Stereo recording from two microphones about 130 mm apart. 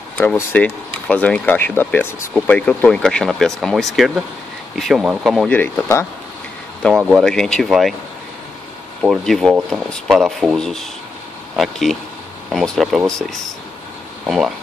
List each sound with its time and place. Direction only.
0.2 s speech: 15° left (ahead or behind)
5.5 s speech: 15° left (ahead or behind)
7.0 s speech: 5° right (ahead or behind)
7.2 s speech: 5° left (ahead or behind)
9.2 s speech: centre (ahead or behind)